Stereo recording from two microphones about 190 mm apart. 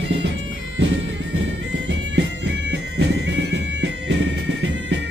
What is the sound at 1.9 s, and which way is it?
Bagpipes, 65° right (ahead or behind).